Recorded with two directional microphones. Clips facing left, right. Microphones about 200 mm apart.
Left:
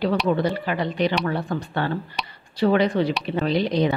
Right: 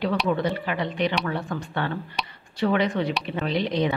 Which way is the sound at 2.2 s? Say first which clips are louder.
Even; centre (ahead or behind).